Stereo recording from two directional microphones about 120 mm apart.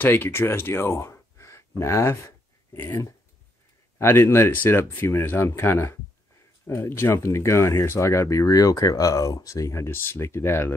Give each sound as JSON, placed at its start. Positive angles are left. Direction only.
{"t": 0.0, "sound": "speech", "side_deg": 15}